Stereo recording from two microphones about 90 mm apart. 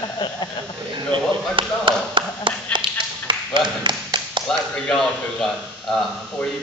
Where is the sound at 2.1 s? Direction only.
65° right (ahead or behind).